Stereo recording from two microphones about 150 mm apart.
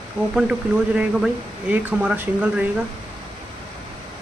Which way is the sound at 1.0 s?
10° right (ahead or behind).